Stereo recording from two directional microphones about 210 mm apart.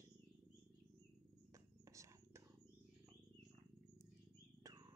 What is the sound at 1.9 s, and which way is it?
Purr, 15° right (ahead or behind).